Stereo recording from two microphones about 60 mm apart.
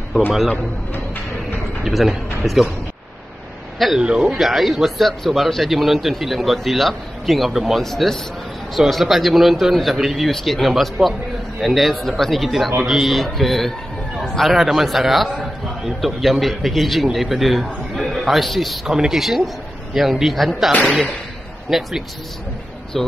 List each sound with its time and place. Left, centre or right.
1.9 s a man's voice: centre
4.0 s speech: centre
4.4 s a man's voice: centre